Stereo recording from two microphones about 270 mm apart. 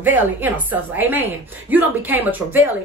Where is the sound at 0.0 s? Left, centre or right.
Centre.